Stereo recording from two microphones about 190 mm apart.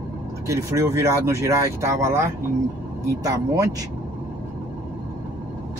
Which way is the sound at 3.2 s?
20° right (ahead or behind).